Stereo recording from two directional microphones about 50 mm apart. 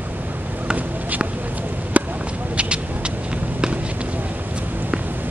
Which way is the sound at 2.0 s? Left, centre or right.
Right.